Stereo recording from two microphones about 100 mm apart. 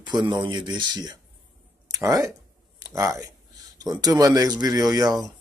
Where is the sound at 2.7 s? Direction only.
30° right (ahead or behind).